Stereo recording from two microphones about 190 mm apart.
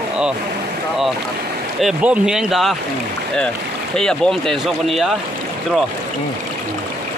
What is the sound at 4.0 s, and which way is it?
Speech, 5° left (ahead or behind).